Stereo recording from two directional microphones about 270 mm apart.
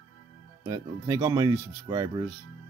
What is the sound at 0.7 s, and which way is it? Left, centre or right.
Speech, centre.